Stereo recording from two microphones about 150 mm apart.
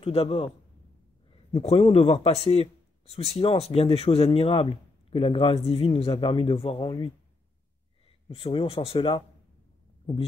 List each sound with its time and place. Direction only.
0.0 s speech: 40° left (ahead or behind)
8.3 s speech: 35° left (ahead or behind)